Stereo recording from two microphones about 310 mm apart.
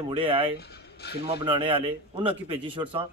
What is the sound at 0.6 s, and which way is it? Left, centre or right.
Speech, left.